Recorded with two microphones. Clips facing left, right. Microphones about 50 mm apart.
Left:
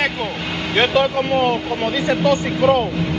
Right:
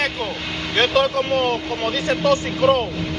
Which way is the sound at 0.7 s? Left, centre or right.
Centre.